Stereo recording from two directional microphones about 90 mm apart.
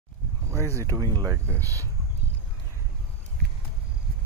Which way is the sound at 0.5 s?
30° right (ahead or behind).